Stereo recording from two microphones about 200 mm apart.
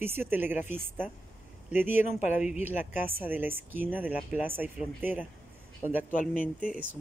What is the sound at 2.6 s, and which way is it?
Speech, 10° right (ahead or behind).